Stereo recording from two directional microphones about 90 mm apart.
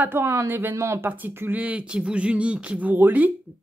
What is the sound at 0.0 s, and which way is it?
Speech, 25° right (ahead or behind).